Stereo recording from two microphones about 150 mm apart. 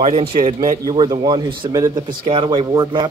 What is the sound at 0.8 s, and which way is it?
A man's voice, 25° right (ahead or behind).